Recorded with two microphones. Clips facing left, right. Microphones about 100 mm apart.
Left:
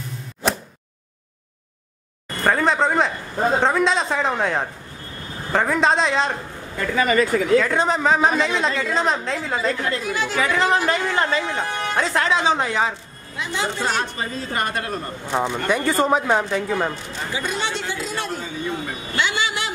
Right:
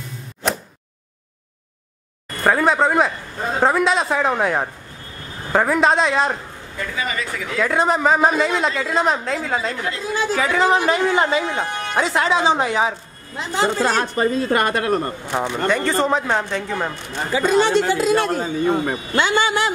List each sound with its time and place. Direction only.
0.4 s a sound: centre (ahead or behind)
2.4 s a woman's voice: 5° right (ahead or behind)
7.0 s speech: 50° left (ahead or behind)
7.6 s a woman's voice: 5° right (ahead or behind)
10.0 s speech: 30° right (ahead or behind)
10.3 s a woman's voice: centre (ahead or behind)
11.0 s speech: 15° right (ahead or behind)
13.4 s a woman's voice: 40° right (ahead or behind); by 15.0 s 60° right (ahead or behind)
15.3 s a woman's voice: centre (ahead or behind)
15.7 s speech: 10° left (ahead or behind)
17.3 s a woman's voice: 45° right (ahead or behind)